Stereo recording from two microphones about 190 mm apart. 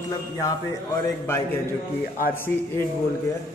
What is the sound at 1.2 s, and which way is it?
Speech, 10° left (ahead or behind).